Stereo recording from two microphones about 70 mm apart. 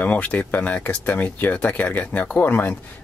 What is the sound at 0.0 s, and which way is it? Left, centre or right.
Speech, left.